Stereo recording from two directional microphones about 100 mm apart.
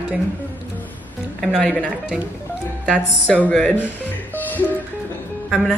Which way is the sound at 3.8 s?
15° left (ahead or behind).